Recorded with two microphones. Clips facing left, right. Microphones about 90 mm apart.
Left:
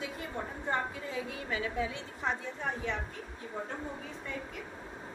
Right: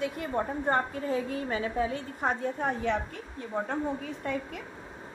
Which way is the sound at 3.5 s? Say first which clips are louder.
Right 9 dB; 75° right (ahead or behind).